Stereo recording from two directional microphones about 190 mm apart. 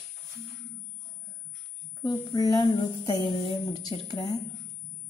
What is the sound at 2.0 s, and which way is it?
A woman's voice, 20° left (ahead or behind).